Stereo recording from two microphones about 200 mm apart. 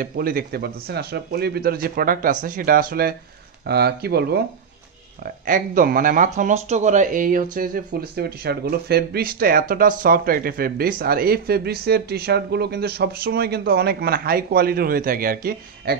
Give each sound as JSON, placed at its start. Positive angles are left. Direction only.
{"t": 0.0, "sound": "speech", "side_deg": -45}